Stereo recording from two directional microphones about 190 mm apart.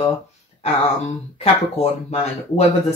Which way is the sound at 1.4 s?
35° left (ahead or behind).